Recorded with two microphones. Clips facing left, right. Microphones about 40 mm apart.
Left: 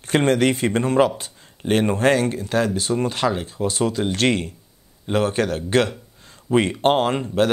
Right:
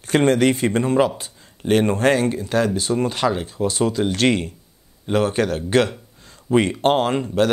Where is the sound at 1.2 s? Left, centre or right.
Left.